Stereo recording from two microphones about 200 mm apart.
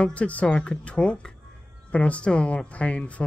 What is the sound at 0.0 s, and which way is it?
Speech, 5° left (ahead or behind).